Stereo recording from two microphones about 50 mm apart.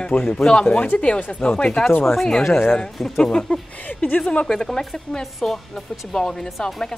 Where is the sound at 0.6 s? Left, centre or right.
Left.